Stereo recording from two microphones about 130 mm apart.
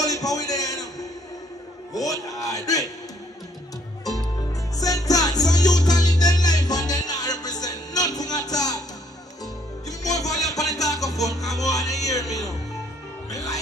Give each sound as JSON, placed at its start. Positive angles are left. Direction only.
{"t": 0.0, "sound": "a sound", "side_deg": 25}
{"t": 2.0, "sound": "speech", "side_deg": 25}
{"t": 4.7, "sound": "music", "side_deg": 30}
{"t": 9.8, "sound": "music", "side_deg": 25}